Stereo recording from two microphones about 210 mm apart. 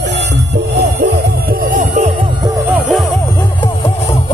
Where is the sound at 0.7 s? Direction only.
45° right (ahead or behind).